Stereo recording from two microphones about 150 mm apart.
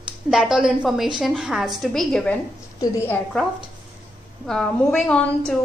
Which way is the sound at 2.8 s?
15° left (ahead or behind).